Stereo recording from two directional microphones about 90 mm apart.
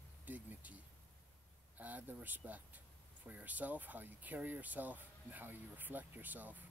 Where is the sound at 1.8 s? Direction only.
20° right (ahead or behind).